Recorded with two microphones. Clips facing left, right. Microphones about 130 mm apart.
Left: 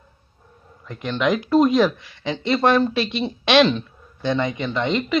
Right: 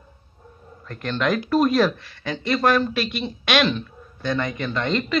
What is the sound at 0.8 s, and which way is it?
Speech, 15° left (ahead or behind).